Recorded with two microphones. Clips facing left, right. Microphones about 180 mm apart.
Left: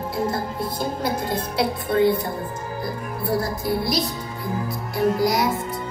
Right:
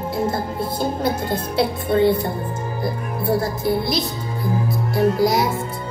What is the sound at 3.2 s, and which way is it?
Speech, 25° right (ahead or behind).